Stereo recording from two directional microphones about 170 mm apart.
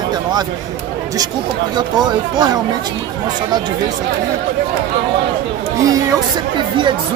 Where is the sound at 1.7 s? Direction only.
25° right (ahead or behind).